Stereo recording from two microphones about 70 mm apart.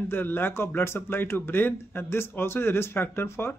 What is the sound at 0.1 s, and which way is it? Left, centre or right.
Speech, left.